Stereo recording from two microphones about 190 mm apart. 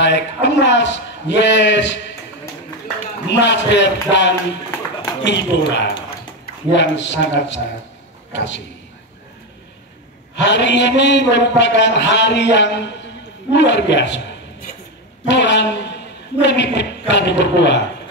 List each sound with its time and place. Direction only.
0.0 s a man's voice: 65° left (ahead or behind)
3.3 s a man's voice: 65° left (ahead or behind)
10.3 s a man's voice: 70° left (ahead or behind)